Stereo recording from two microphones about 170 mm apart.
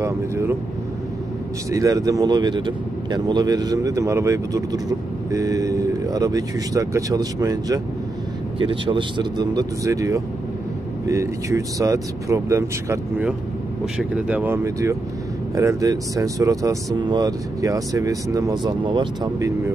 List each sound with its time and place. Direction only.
0.0 s speech: 15° right (ahead or behind)
1.7 s a man's voice: 20° right (ahead or behind)
8.5 s a man's voice: 30° right (ahead or behind)
13.9 s a man's voice: 5° right (ahead or behind); by 19.5 s 25° right (ahead or behind)